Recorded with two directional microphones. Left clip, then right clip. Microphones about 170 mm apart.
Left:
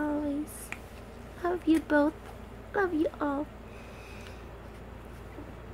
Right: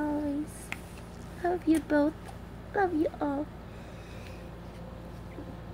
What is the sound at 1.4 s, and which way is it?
Speech, 15° left (ahead or behind).